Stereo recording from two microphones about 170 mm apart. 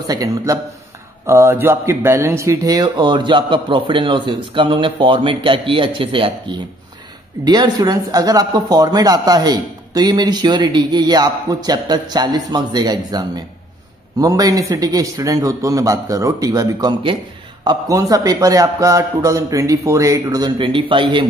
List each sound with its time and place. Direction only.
0.0 s speech: 20° right (ahead or behind)